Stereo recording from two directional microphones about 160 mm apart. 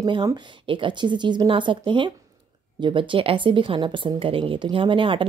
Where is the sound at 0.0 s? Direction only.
25° right (ahead or behind).